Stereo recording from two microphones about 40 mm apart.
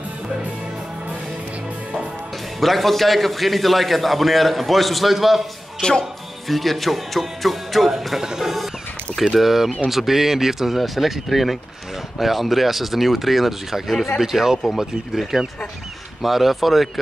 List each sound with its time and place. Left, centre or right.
2.6 s a man's voice: centre
5.8 s speech: centre
6.5 s a man's voice: centre